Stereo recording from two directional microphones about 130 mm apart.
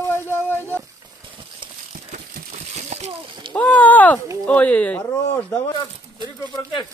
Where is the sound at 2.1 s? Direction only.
60° right (ahead or behind).